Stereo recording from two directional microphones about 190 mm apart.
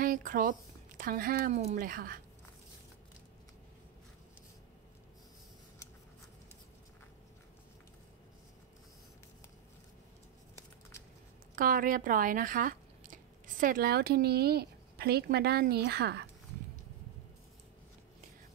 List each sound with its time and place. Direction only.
0.0 s speech: 45° right (ahead or behind)
11.5 s speech: 45° right (ahead or behind)